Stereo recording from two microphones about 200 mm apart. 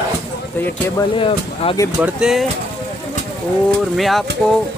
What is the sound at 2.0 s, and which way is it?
Speech, 5° right (ahead or behind).